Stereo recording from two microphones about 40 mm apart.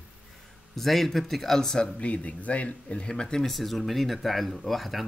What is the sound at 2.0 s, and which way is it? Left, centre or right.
Speech, left.